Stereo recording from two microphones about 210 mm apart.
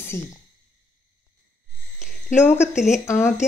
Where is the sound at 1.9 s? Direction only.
35° left (ahead or behind).